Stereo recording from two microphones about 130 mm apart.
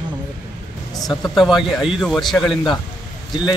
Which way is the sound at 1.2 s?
Centre (ahead or behind).